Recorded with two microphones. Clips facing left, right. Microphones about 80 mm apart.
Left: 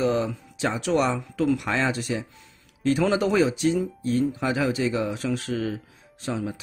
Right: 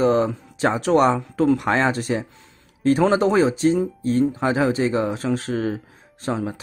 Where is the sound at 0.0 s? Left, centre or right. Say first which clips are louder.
Right 5 dB; right.